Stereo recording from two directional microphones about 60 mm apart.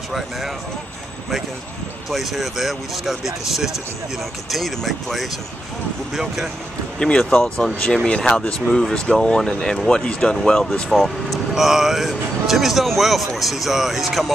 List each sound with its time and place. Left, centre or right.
2.0 s speech: centre
7.0 s speech: centre
11.0 s speech: centre